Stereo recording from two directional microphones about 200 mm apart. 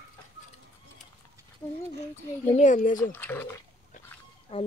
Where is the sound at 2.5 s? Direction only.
40° left (ahead or behind).